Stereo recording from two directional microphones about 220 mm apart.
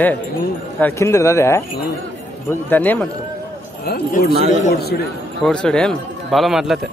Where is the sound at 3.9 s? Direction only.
45° left (ahead or behind).